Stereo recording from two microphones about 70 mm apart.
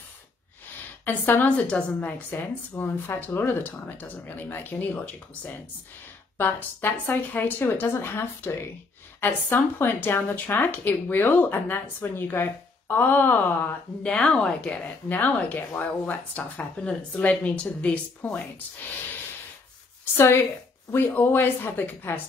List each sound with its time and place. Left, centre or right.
1.0 s speech: left
1.6 s a woman's voice: centre
14.0 s speech: centre
20.9 s speech: left